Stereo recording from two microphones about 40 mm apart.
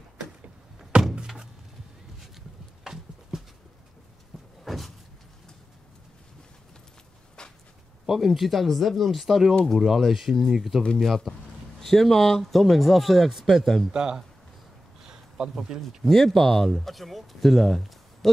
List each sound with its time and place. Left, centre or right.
1.2 s a sound: centre
4.6 s door: centre
7.4 s a sound: left
8.1 s speech: centre
11.0 s speech: centre
13.9 s speech: centre
15.0 s a sound: right
15.5 s speech: centre
16.1 s speech: centre